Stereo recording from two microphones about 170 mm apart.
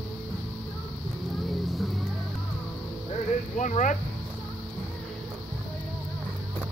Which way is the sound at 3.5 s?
45° left (ahead or behind).